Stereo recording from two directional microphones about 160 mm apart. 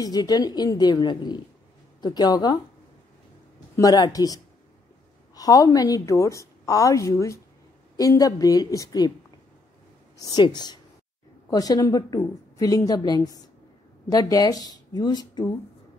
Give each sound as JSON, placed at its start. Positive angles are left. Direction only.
{"t": 0.0, "sound": "a woman's voice", "side_deg": 25}
{"t": 3.7, "sound": "a woman's voice", "side_deg": 25}
{"t": 10.1, "sound": "a woman's voice", "side_deg": 25}